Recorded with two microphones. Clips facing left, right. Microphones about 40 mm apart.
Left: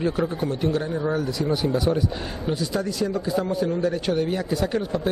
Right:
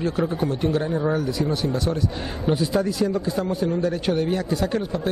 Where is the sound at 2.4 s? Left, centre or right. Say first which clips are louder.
Right 4 dB; centre.